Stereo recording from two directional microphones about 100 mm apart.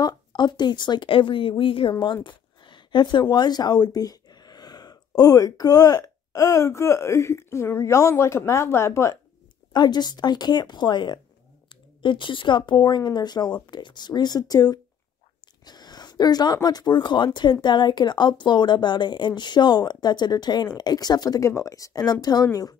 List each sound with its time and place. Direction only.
0.0 s speech: 45° left (ahead or behind); by 9.2 s 30° left (ahead or behind)
9.7 s speech: 45° left (ahead or behind)